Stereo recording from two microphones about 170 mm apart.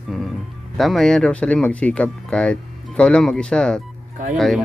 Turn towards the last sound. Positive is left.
turn(degrees=0)  # may be behind; listen again after turning